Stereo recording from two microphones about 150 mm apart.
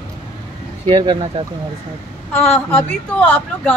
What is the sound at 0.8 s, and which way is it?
Speech, 35° right (ahead or behind).